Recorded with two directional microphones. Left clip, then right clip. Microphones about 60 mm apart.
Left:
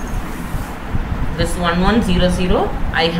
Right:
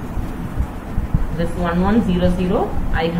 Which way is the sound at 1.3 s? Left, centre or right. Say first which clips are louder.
Left 3 dB; centre.